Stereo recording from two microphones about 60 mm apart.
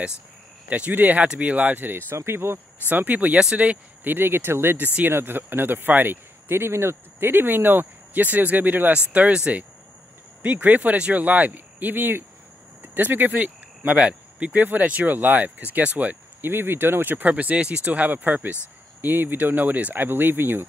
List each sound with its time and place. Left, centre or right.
0.7 s speech: right
2.9 s speech: right
3.3 s speech: centre
4.0 s speech: right
9.1 s speech: right
16.4 s speech: right